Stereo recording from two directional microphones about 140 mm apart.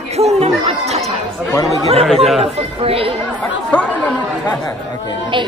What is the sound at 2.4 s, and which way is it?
Speech, 45° right (ahead or behind).